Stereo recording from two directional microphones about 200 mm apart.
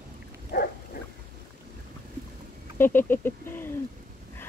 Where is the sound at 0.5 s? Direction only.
50° left (ahead or behind).